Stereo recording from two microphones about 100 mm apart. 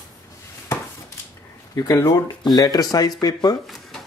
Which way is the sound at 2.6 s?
40° left (ahead or behind).